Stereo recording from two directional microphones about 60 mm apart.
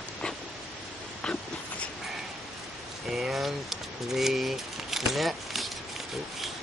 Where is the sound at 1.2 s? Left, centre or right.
Centre.